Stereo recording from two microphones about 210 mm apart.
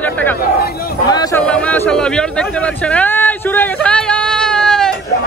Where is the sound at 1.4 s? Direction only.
5° left (ahead or behind).